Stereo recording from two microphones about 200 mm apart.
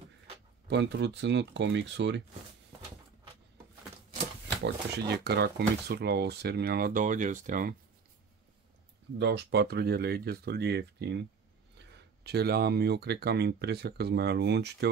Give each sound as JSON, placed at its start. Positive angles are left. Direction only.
{"t": 0.7, "sound": "speech", "side_deg": -60}
{"t": 4.6, "sound": "speech", "side_deg": -55}
{"t": 9.2, "sound": "speech", "side_deg": -60}